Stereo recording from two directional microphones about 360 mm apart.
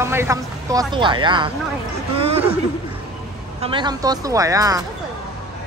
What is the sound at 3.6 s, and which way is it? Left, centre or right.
Speech, centre.